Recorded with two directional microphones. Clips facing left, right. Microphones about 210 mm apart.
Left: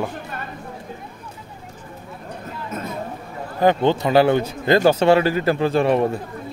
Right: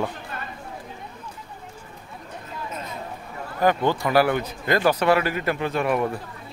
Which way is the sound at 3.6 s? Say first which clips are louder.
Left 4 dB; 25° left (ahead or behind).